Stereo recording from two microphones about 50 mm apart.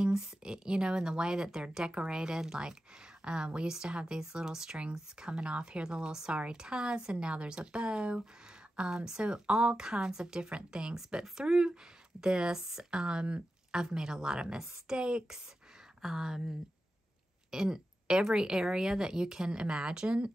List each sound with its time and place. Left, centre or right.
0.0 s speech: centre